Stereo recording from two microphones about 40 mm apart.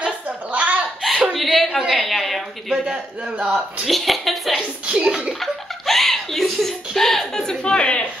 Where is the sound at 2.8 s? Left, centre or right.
Right.